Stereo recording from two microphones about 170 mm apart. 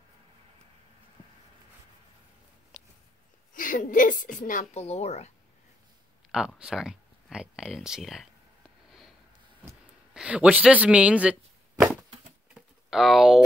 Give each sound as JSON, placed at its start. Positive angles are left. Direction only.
{"t": 2.7, "sound": "a sound", "side_deg": 5}
{"t": 3.5, "sound": "a woman's voice", "side_deg": 55}
{"t": 6.3, "sound": "speech", "side_deg": -5}
{"t": 10.1, "sound": "speech", "side_deg": -5}
{"t": 11.8, "sound": "a sound", "side_deg": -10}
{"t": 12.5, "sound": "typing", "side_deg": 0}